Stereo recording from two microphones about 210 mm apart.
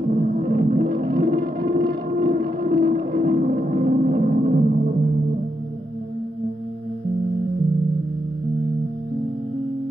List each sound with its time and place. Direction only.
0.1 s music: 40° right (ahead or behind)